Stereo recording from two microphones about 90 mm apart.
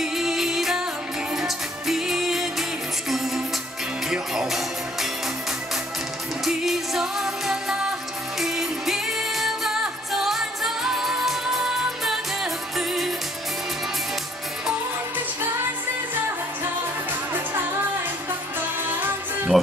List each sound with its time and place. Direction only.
0.0 s music: 5° right (ahead or behind)
4.1 s music: 5° right (ahead or behind)
6.4 s music: 5° right (ahead or behind)
18.9 s music: 20° right (ahead or behind)